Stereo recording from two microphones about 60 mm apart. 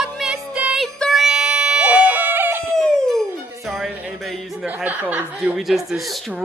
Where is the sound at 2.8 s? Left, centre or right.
Centre.